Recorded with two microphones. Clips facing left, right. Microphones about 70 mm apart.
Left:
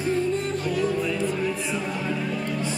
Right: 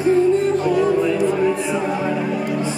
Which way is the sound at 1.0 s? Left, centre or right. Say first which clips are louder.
Right 8 dB; centre.